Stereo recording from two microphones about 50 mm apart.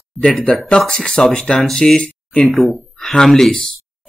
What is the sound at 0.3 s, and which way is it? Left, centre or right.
Speech, centre.